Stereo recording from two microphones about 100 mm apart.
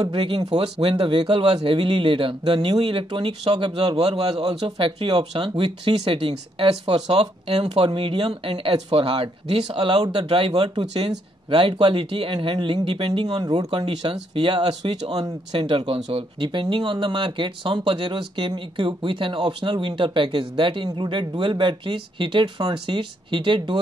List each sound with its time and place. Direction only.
0.1 s speech: 65° right (ahead or behind); by 11.1 s 50° right (ahead or behind)
11.5 s speech: 60° right (ahead or behind)
13.4 s speech: 45° right (ahead or behind)
13.7 s speech: 60° right (ahead or behind)
15.0 s speech: 45° right (ahead or behind); by 16.4 s 70° right (ahead or behind)
16.4 s speech: 55° right (ahead or behind)